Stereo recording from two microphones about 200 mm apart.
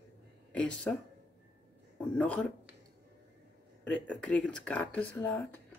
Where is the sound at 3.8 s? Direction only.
5° left (ahead or behind).